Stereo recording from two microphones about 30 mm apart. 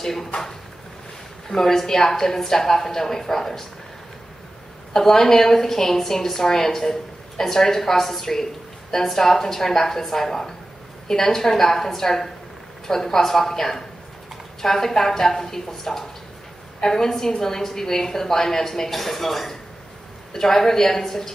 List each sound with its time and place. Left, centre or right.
0.0 s speech: centre
1.5 s a woman's voice: centre
4.9 s a woman's voice: centre